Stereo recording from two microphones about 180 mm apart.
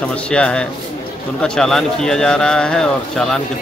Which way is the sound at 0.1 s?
5° left (ahead or behind).